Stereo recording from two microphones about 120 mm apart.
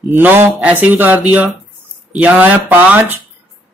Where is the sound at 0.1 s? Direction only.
20° right (ahead or behind).